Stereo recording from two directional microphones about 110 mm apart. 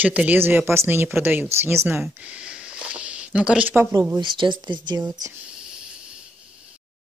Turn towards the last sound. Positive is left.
turn(degrees=-35)  # may be behind; listen again after turning